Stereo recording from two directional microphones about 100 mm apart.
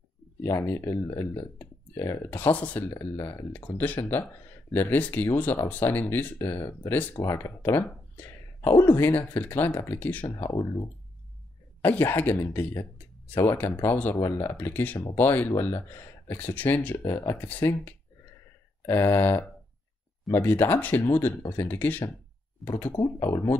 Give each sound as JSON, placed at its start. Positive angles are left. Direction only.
{"t": 0.4, "sound": "speech", "side_deg": 25}
{"t": 2.3, "sound": "speech", "side_deg": 20}
{"t": 8.8, "sound": "speech", "side_deg": 20}
{"t": 10.3, "sound": "speech", "side_deg": 35}
{"t": 11.8, "sound": "speech", "side_deg": 20}
{"t": 14.1, "sound": "speech", "side_deg": 30}
{"t": 17.0, "sound": "speech", "side_deg": 30}
{"t": 20.4, "sound": "speech", "side_deg": 20}
{"t": 22.6, "sound": "speech", "side_deg": 0}
{"t": 23.1, "sound": "speech", "side_deg": 35}